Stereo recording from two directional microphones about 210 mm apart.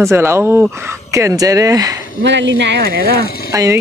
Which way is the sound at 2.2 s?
60° right (ahead or behind).